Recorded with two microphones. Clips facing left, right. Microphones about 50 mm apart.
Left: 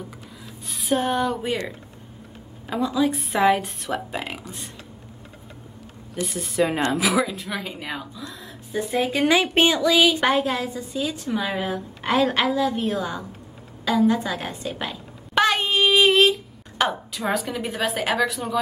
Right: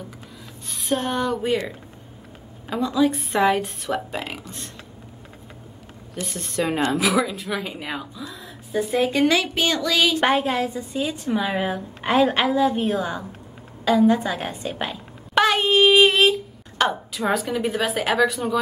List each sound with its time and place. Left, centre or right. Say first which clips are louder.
0.7 s a woman's voice: left 2 dB; centre
2.7 s speech: right 2 dB; centre
6.1 s speech: left 3 dB; centre
10.3 s a woman's voice: right 1 dB; centre
15.3 s a sound: right 2 dB; centre